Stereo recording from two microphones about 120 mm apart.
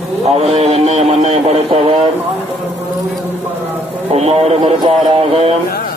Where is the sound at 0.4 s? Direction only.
60° right (ahead or behind).